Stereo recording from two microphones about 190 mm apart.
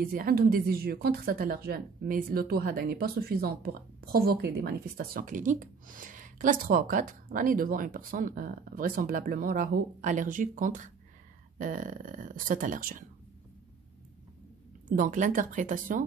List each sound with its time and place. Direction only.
0.0 s a woman's voice: 50° right (ahead or behind)
14.9 s a woman's voice: 45° right (ahead or behind)